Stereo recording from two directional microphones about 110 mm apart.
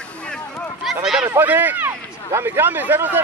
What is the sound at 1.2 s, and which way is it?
Speech, 15° right (ahead or behind).